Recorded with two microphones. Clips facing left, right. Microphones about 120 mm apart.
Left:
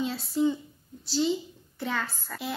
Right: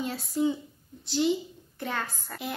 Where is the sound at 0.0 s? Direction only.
45° right (ahead or behind).